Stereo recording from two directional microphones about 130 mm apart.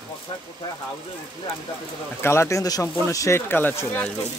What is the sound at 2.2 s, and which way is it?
Speech, 20° left (ahead or behind).